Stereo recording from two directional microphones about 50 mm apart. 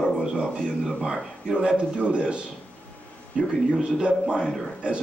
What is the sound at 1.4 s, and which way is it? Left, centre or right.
A man's voice, centre.